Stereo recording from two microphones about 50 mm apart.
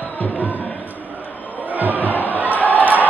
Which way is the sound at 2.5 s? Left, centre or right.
Left.